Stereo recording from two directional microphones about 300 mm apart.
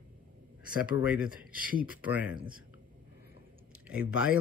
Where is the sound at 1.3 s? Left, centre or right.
Right.